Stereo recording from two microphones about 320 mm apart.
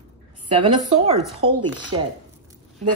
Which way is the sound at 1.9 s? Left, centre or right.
Centre.